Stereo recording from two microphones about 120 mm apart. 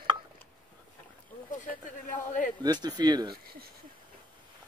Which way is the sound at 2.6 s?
35° right (ahead or behind).